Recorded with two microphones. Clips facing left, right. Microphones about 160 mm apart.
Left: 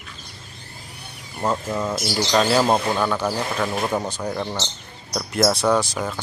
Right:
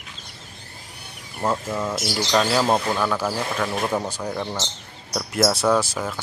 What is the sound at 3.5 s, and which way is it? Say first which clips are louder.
Speech: left 1 dB; 5° left (ahead or behind).